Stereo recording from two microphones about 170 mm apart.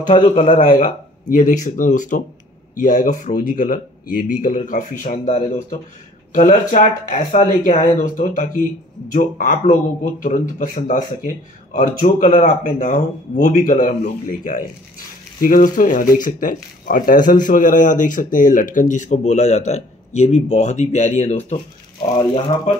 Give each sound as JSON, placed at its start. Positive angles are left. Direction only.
{"t": 0.2, "sound": "speech", "side_deg": 35}
{"t": 0.6, "sound": "speech", "side_deg": 50}
{"t": 12.3, "sound": "speech", "side_deg": 35}
{"t": 12.8, "sound": "speech", "side_deg": 50}